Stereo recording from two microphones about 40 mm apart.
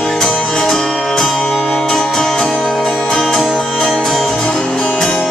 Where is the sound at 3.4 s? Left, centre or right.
Centre.